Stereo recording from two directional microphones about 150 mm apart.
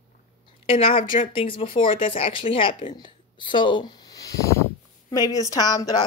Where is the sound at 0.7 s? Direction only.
40° left (ahead or behind).